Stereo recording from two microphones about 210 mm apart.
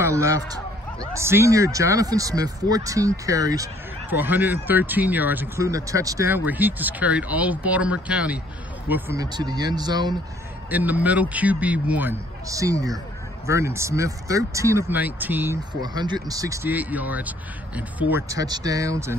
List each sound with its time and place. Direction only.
0.0 s speech: 15° right (ahead or behind)
10.7 s speech: 10° right (ahead or behind)